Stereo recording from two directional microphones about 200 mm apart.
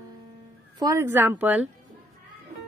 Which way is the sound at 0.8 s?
15° right (ahead or behind).